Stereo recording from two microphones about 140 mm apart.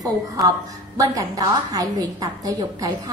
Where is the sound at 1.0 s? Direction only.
25° right (ahead or behind).